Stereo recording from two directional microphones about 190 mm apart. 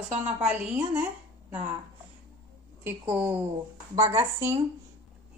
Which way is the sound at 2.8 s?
10° right (ahead or behind).